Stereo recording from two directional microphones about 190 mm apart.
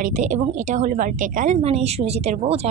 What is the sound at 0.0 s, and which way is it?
A woman's voice, 40° right (ahead or behind).